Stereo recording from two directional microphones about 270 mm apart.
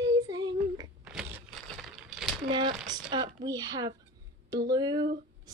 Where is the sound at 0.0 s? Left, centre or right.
Centre.